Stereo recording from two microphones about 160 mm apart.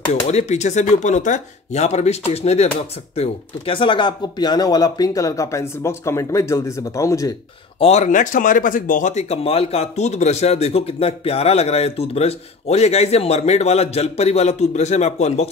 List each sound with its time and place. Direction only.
0.1 s speech: 45° left (ahead or behind); by 7.3 s 20° left (ahead or behind)
7.8 s speech: 45° left (ahead or behind)